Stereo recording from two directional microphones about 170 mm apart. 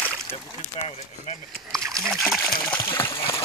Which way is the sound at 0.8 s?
40° left (ahead or behind).